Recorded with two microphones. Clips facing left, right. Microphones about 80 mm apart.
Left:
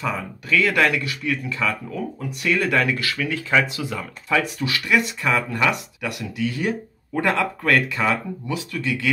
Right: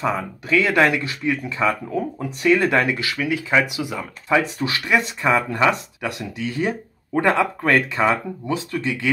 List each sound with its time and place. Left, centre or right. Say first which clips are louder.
0.0 s speech: right 4 dB; right